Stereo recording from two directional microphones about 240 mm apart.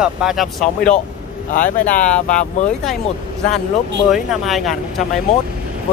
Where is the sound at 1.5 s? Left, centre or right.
Left.